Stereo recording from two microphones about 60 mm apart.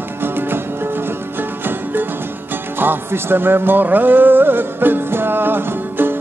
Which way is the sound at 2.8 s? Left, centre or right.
Right.